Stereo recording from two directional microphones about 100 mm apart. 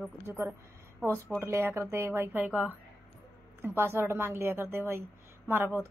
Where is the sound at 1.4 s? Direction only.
25° right (ahead or behind).